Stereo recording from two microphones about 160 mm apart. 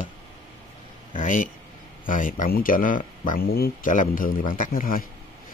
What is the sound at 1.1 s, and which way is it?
Speech, 55° left (ahead or behind).